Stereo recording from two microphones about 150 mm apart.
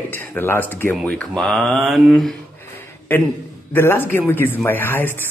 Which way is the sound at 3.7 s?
15° left (ahead or behind).